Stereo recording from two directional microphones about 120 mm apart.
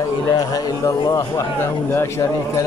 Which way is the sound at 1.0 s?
30° left (ahead or behind).